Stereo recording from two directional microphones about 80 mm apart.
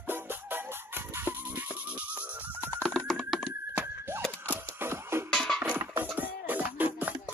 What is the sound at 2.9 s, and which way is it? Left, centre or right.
Typing, centre.